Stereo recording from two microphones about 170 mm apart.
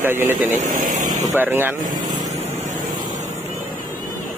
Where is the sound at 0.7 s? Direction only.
50° right (ahead or behind).